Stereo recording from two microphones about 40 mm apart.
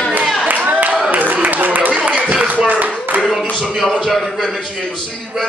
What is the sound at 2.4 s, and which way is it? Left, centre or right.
Clapping, right.